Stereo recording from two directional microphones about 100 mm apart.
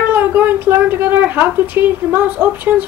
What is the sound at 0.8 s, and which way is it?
A woman's voice, 20° right (ahead or behind).